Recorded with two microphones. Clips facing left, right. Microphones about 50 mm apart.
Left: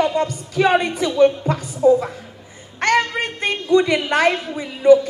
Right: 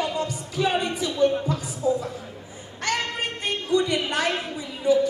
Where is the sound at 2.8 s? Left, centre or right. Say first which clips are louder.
Left 9 dB; left.